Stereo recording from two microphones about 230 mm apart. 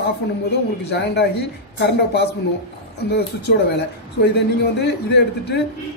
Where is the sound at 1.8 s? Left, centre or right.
Left.